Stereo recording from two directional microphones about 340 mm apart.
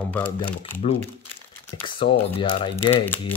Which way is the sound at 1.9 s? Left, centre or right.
Centre.